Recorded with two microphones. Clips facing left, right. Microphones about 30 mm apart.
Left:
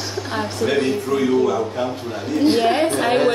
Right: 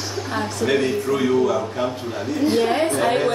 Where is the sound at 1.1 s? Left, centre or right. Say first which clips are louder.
Left 2 dB; centre.